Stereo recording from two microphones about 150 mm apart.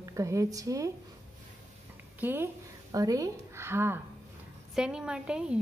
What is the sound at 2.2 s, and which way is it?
A woman's voice, 15° right (ahead or behind).